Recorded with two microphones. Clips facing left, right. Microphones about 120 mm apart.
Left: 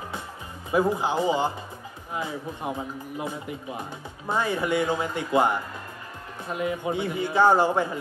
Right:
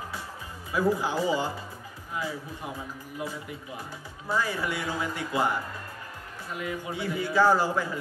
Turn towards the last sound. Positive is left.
turn(degrees=25)  # may be behind; listen again after turning